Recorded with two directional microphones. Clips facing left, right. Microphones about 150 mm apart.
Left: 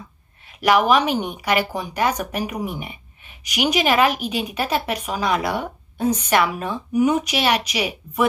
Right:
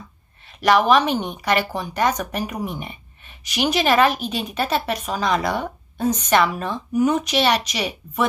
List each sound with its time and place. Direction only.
0.5 s a woman's voice: 10° left (ahead or behind)